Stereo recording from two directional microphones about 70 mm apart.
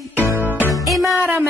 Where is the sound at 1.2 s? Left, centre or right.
Right.